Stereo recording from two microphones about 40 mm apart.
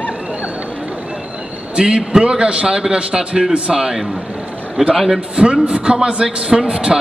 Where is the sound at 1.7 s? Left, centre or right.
Right.